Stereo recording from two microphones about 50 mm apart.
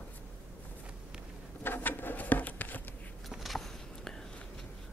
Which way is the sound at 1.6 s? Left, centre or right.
Left.